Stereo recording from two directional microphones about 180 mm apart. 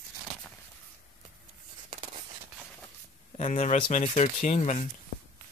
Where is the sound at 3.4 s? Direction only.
40° left (ahead or behind).